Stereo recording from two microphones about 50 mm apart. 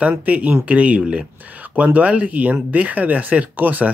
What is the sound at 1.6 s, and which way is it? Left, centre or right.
Speech, right.